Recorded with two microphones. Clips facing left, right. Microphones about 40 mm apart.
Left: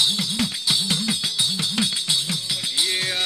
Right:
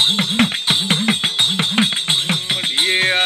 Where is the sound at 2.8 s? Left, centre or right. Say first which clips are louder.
Right 12 dB; right.